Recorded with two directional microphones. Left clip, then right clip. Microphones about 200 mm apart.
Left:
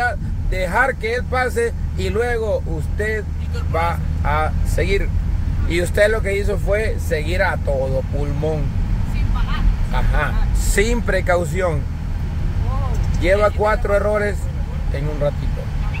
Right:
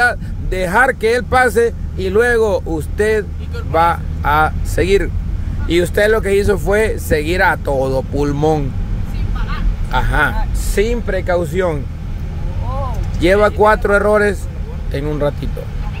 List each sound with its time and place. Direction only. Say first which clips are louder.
0.0 s speech: right 7 dB; 35° right (ahead or behind)
9.9 s speech: right 8 dB; 35° right (ahead or behind)
10.7 s speech: right 2 dB; 15° right (ahead or behind)
13.2 s speech: right 5 dB; 35° right (ahead or behind)